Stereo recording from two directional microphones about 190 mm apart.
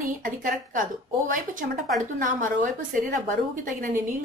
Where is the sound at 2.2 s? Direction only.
45° right (ahead or behind).